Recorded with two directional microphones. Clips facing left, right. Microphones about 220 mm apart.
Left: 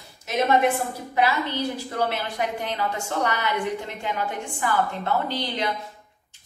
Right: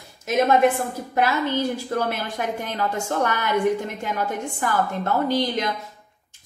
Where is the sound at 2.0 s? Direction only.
45° right (ahead or behind).